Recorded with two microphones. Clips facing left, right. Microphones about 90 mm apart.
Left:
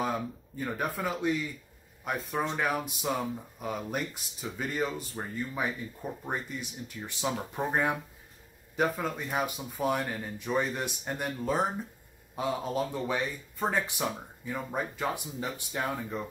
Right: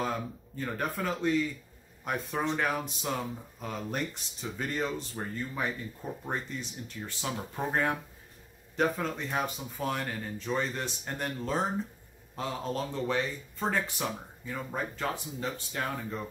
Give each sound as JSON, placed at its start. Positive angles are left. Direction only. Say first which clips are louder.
{"t": 0.6, "sound": "speech", "louder": "left 1 dB", "side_deg": 10}